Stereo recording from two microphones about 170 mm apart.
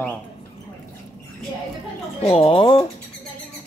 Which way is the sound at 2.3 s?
30° left (ahead or behind).